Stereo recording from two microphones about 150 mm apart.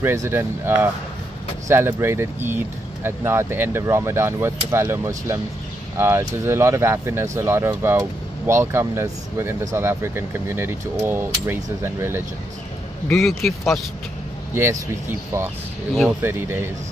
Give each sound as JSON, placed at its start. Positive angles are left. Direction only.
{"t": 0.0, "sound": "speech", "side_deg": -15}
{"t": 13.1, "sound": "speech", "side_deg": 0}
{"t": 14.5, "sound": "speech", "side_deg": -15}